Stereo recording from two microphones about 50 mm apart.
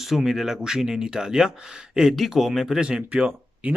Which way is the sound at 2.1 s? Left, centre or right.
Centre.